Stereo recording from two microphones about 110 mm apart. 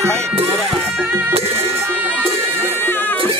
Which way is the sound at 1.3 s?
65° right (ahead or behind).